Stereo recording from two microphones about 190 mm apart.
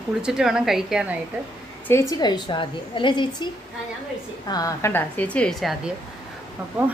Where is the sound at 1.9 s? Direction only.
15° left (ahead or behind).